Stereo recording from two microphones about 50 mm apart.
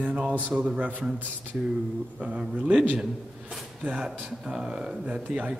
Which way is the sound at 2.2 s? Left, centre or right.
Right.